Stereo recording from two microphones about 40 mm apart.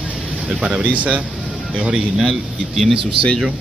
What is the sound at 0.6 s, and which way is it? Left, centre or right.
Speech, right.